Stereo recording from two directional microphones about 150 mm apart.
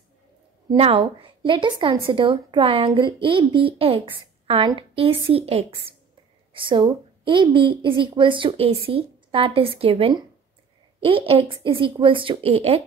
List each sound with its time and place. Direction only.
0.7 s a woman's voice: 35° right (ahead or behind)